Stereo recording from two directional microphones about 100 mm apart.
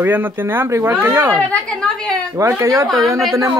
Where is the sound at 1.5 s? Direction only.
10° left (ahead or behind).